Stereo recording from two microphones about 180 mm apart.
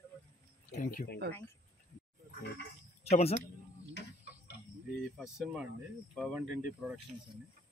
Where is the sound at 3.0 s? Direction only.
35° left (ahead or behind).